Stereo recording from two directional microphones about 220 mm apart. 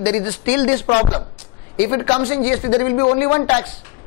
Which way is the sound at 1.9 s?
25° left (ahead or behind).